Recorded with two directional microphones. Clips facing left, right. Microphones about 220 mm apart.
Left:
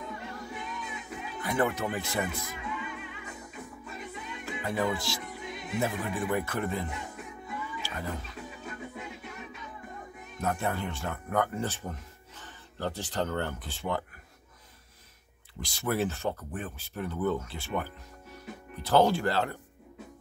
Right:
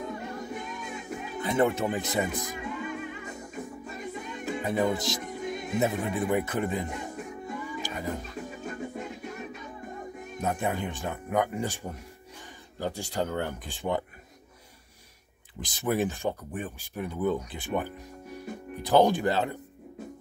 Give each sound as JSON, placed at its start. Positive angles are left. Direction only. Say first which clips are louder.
{"t": 0.0, "sound": "music", "louder": "right 5 dB", "side_deg": -45}
{"t": 1.4, "sound": "speech", "louder": "right 4 dB", "side_deg": -25}
{"t": 2.5, "sound": "music", "louder": "right 4 dB", "side_deg": -45}
{"t": 4.9, "sound": "speech", "louder": "right 4 dB", "side_deg": -20}
{"t": 5.2, "sound": "music", "louder": "right 6 dB", "side_deg": -45}
{"t": 6.0, "sound": "speech", "louder": "right 3 dB", "side_deg": -20}
{"t": 7.4, "sound": "music", "louder": "right 2 dB", "side_deg": -45}
{"t": 7.8, "sound": "speech", "louder": "right 4 dB", "side_deg": -15}
{"t": 8.2, "sound": "music", "louder": "right 5 dB", "side_deg": -45}
{"t": 10.4, "sound": "speech", "louder": "right 1 dB", "side_deg": -15}
{"t": 15.6, "sound": "speech", "louder": "right 2 dB", "side_deg": -15}